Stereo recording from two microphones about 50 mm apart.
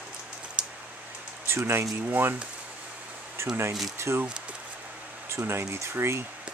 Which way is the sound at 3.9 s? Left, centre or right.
Right.